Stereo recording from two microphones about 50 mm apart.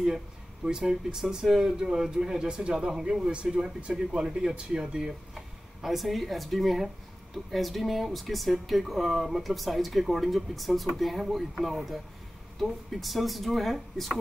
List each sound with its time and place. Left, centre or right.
0.7 s speech: centre